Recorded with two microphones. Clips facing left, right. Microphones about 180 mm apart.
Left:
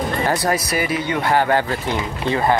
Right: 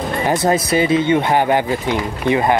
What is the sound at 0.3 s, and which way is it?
Speech, 25° right (ahead or behind).